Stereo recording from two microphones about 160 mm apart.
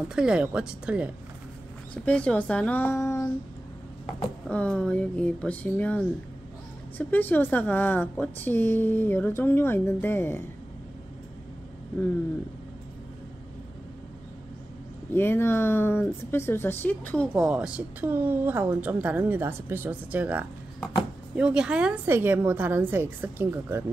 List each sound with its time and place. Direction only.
0.1 s a woman's voice: 5° right (ahead or behind)
2.0 s speech: 10° left (ahead or behind)
4.5 s speech: 10° left (ahead or behind)
15.1 s speech: 15° left (ahead or behind)
17.4 s a woman's voice: 5° right (ahead or behind)